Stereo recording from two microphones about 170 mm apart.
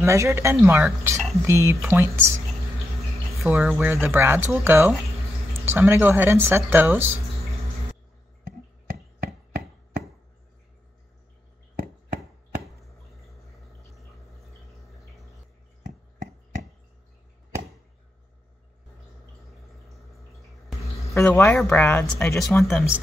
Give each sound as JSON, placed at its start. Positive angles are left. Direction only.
{"t": 0.0, "sound": "speech", "side_deg": -15}
{"t": 3.4, "sound": "speech", "side_deg": -10}
{"t": 12.2, "sound": "chopping", "side_deg": 0}
{"t": 19.7, "sound": "a sound", "side_deg": 0}
{"t": 20.8, "sound": "speech", "side_deg": 15}
{"t": 22.7, "sound": "speech", "side_deg": 0}